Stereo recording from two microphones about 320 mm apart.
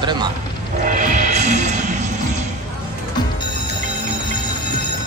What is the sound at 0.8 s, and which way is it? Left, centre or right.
Music, right.